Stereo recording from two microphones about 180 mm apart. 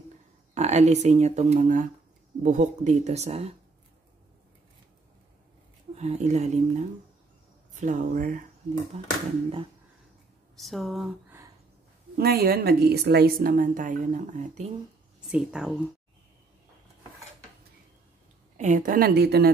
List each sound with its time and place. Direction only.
0.6 s speech: 40° right (ahead or behind)
5.9 s speech: 40° right (ahead or behind)
8.9 s speech: 35° right (ahead or behind)
10.5 s speech: centre (ahead or behind)
12.2 s a woman's voice: 60° right (ahead or behind); by 14.7 s 40° right (ahead or behind)
15.2 s speech: 5° right (ahead or behind)
18.6 s a woman's voice: 45° right (ahead or behind); by 19.5 s 60° right (ahead or behind)